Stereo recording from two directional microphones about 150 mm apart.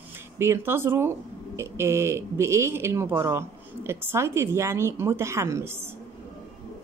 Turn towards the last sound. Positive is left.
turn(degrees=-15)  # may be behind; listen again after turning